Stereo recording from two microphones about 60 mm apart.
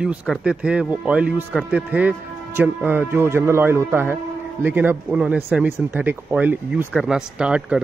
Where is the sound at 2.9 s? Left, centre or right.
Right.